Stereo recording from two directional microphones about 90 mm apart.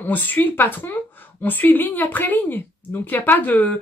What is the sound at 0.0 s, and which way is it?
Speech, 20° left (ahead or behind).